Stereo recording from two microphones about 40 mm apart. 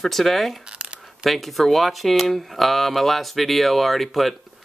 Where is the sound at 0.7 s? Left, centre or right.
Right.